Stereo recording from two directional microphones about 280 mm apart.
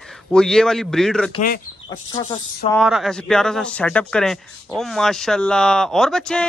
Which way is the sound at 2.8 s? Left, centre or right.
Centre.